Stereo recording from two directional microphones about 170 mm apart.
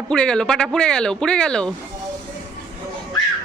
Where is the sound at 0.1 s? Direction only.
5° left (ahead or behind).